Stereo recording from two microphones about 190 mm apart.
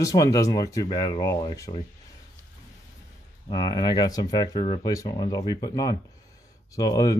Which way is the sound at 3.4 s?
20° left (ahead or behind).